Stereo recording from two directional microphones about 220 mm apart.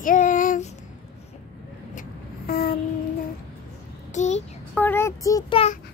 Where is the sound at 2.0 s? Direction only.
40° left (ahead or behind).